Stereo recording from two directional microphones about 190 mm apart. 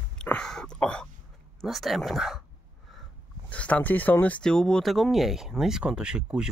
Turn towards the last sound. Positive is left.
turn(degrees=-5)  # may be behind; listen again after turning